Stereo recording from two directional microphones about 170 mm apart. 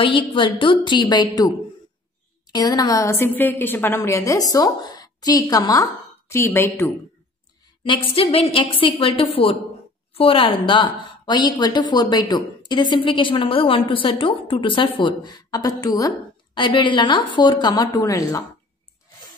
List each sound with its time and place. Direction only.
0.0 s a woman's voice: 30° left (ahead or behind)
7.8 s a woman's voice: 30° left (ahead or behind)